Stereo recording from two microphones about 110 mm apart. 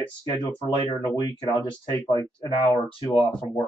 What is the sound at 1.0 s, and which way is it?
Speech, 35° left (ahead or behind).